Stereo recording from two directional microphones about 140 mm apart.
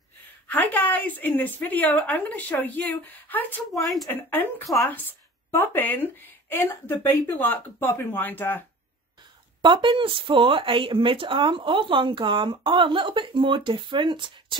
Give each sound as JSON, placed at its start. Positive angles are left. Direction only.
{"t": 0.5, "sound": "a woman's voice", "side_deg": 10}
{"t": 3.8, "sound": "speech", "side_deg": 0}
{"t": 4.1, "sound": "a woman's voice", "side_deg": 15}
{"t": 9.6, "sound": "speech", "side_deg": -35}